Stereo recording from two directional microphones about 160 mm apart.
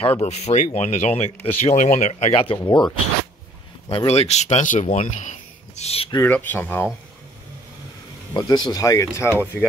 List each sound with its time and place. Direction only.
0.0 s speech: 40° left (ahead or behind)
3.9 s speech: 40° left (ahead or behind)
6.0 s speech: 25° left (ahead or behind)
6.3 s speech: 10° left (ahead or behind)
8.3 s speech: 25° left (ahead or behind)